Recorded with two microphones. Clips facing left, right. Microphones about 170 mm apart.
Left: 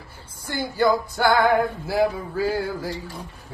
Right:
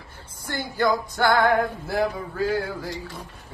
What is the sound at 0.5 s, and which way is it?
Female singing, 10° left (ahead or behind).